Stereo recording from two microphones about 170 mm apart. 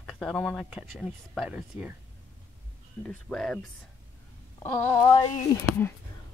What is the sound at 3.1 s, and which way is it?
Speech, 5° left (ahead or behind).